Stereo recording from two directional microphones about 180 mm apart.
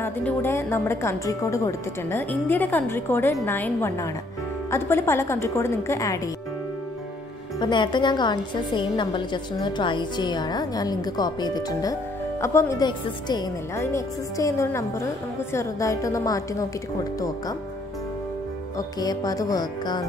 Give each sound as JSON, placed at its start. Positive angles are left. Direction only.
{"t": 0.0, "sound": "a woman's voice", "side_deg": 10}
{"t": 7.6, "sound": "a woman's voice", "side_deg": 25}
{"t": 18.8, "sound": "a woman's voice", "side_deg": 20}